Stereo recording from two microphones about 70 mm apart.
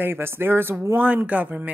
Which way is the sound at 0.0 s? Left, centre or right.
Right.